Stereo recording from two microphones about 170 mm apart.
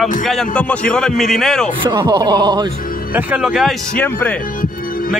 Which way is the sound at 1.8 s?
25° right (ahead or behind).